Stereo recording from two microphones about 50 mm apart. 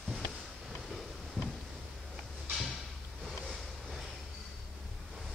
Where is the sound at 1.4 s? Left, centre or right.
Centre.